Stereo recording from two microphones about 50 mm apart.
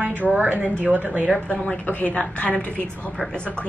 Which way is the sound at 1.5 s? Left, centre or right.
Centre.